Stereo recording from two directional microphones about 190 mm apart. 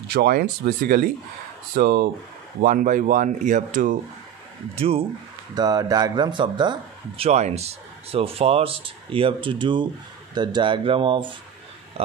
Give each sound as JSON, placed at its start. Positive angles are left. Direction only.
{"t": 0.1, "sound": "speech", "side_deg": -55}
{"t": 2.6, "sound": "speech", "side_deg": -45}
{"t": 4.7, "sound": "speech", "side_deg": -30}
{"t": 7.2, "sound": "speech", "side_deg": -35}